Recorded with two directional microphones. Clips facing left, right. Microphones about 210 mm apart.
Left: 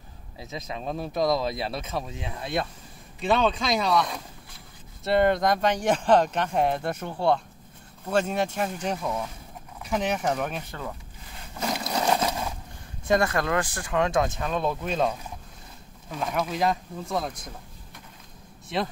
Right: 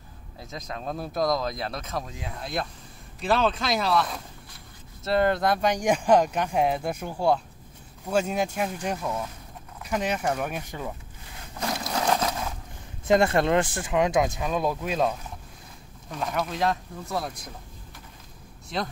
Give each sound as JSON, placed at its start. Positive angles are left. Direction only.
{"t": 0.4, "sound": "speech", "side_deg": 5}
{"t": 10.7, "sound": "speech", "side_deg": -15}
{"t": 11.6, "sound": "sewing machine", "side_deg": 5}
{"t": 13.0, "sound": "speech", "side_deg": -25}